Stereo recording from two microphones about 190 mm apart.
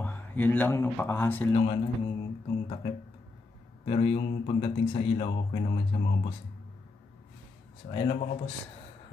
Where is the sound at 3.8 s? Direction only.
30° left (ahead or behind).